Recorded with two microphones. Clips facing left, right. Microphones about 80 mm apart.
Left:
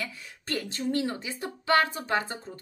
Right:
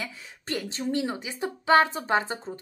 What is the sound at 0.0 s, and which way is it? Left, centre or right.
A woman's voice, right.